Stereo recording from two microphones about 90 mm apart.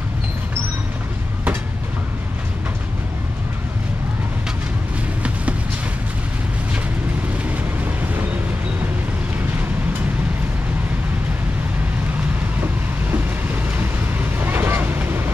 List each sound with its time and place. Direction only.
13.7 s vehicle: 20° right (ahead or behind)